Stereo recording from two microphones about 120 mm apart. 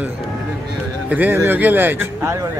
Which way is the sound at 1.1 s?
15° right (ahead or behind).